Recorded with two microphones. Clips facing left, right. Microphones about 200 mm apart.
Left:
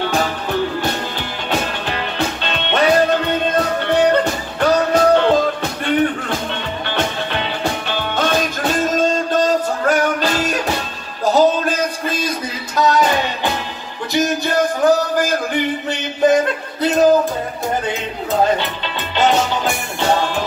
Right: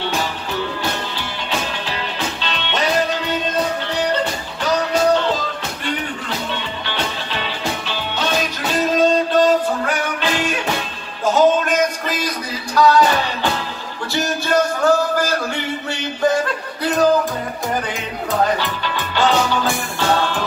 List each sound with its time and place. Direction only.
1.1 s music: 55° left (ahead or behind)
11.2 s a sound: 35° left (ahead or behind)
12.7 s music: 20° left (ahead or behind)
18.6 s music: 20° left (ahead or behind)